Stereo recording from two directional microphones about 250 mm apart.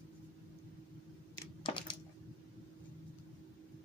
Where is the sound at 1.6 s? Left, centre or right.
Centre.